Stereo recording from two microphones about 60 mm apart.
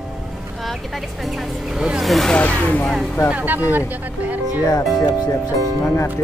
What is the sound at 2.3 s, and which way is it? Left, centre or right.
Speech, left.